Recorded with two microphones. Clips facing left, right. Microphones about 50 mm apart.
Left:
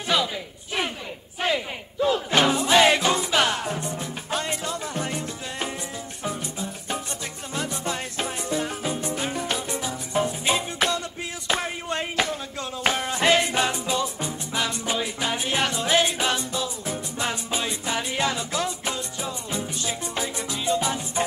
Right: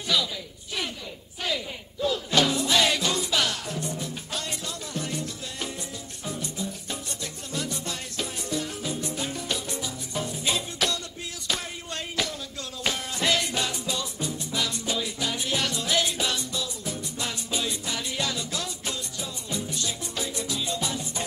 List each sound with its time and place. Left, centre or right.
0.1 s a sound: left
1.4 s battle cry: left
6.2 s music: left